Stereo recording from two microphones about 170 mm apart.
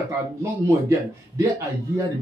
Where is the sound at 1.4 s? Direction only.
15° right (ahead or behind).